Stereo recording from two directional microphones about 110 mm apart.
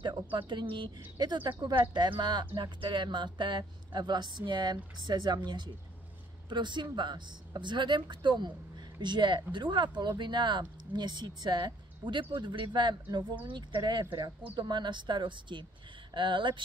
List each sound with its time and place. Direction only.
0.0 s speech: 45° right (ahead or behind)